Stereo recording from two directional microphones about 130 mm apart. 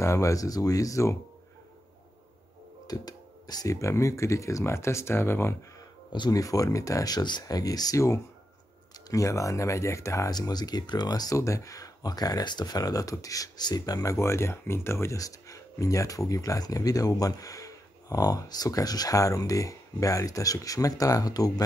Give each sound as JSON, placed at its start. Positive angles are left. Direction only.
{"t": 0.0, "sound": "speech", "side_deg": 25}
{"t": 2.9, "sound": "speech", "side_deg": 30}
{"t": 6.1, "sound": "speech", "side_deg": 30}